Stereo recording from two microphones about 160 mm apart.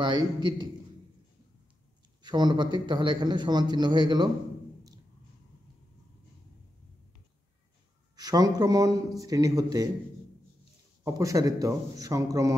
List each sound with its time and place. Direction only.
0.0 s a man's voice: 30° right (ahead or behind)
2.2 s a man's voice: 25° right (ahead or behind)
8.2 s a man's voice: 25° right (ahead or behind)
11.1 s a man's voice: 20° right (ahead or behind)